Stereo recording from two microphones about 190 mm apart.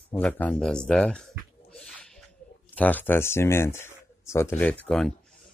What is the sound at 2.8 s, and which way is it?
Speech, 10° left (ahead or behind).